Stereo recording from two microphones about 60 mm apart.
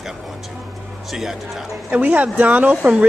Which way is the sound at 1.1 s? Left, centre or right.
Centre.